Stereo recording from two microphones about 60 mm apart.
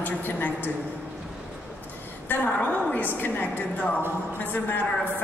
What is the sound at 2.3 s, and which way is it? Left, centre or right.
A woman's voice, left.